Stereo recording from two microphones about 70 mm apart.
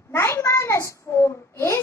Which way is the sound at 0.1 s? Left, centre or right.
Left.